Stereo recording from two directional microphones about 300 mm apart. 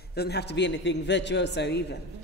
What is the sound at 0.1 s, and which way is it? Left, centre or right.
A man's voice, left.